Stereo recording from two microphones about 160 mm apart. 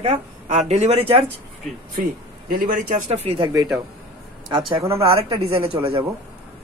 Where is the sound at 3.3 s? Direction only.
25° right (ahead or behind).